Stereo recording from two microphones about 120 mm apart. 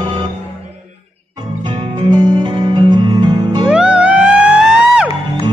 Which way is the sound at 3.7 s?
10° right (ahead or behind).